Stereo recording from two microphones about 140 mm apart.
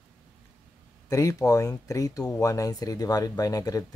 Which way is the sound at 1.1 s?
25° left (ahead or behind).